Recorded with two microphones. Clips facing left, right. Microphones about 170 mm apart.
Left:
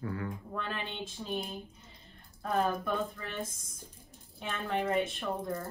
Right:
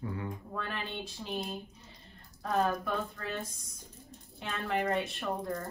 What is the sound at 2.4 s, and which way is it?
Speech, 5° left (ahead or behind).